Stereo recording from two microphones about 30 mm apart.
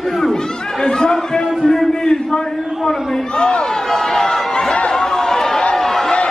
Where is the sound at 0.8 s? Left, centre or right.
Left.